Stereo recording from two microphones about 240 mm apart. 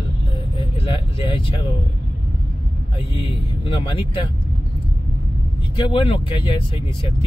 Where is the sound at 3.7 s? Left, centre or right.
Left.